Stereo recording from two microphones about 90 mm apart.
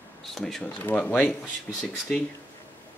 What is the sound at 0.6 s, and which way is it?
Speech, 20° left (ahead or behind).